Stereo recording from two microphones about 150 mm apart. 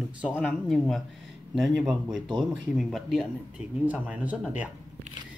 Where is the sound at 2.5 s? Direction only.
Centre (ahead or behind).